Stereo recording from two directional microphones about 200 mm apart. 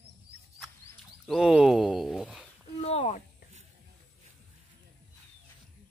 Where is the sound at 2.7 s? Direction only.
30° left (ahead or behind).